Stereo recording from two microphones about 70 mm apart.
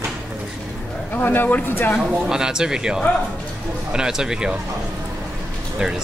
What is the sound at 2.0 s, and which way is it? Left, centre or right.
Speech, centre.